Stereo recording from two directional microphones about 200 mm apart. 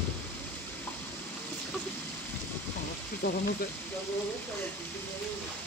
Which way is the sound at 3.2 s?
35° left (ahead or behind).